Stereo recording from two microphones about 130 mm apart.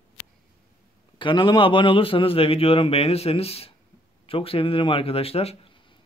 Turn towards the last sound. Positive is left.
turn(degrees=50)  # may be behind; listen again after turning